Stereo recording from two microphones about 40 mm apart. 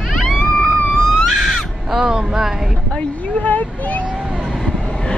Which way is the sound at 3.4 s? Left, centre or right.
Left.